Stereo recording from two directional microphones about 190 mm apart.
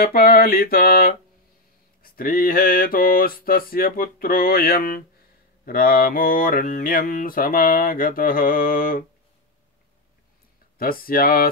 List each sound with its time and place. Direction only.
0.0 s mantra: 50° left (ahead or behind)
10.8 s mantra: 50° left (ahead or behind)